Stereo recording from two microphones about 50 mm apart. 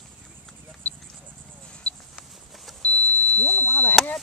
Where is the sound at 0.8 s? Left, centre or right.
Left.